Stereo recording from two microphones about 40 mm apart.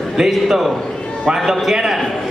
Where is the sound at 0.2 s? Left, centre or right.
Centre.